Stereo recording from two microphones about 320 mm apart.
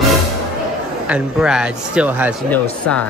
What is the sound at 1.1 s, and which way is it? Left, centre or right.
Speech, centre.